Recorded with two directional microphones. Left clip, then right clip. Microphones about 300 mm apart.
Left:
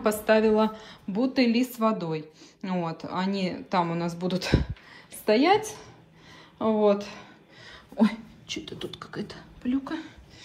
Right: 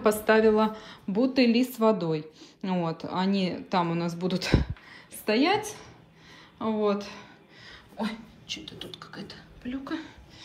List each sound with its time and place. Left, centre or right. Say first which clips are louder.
0.0 s a woman's voice: right 1 dB; centre
9.7 s a woman's voice: left 4 dB; centre